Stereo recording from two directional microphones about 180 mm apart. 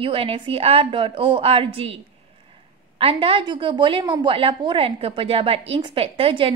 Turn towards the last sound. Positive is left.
turn(degrees=-30)  # may be behind; listen again after turning